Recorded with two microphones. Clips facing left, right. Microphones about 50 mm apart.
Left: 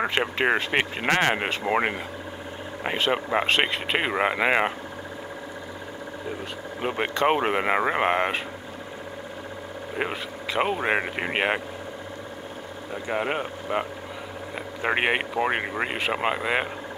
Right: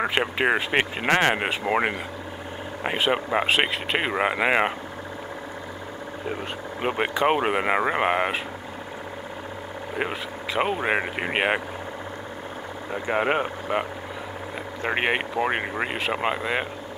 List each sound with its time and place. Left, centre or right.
0.0 s speech: centre
7.0 s speech: centre
9.9 s speech: centre
13.1 s speech: right
14.8 s speech: centre